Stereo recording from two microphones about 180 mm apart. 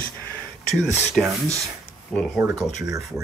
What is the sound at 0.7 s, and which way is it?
Speech, centre (ahead or behind).